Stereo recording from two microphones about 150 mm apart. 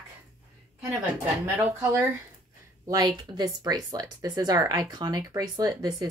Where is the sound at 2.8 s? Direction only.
25° right (ahead or behind).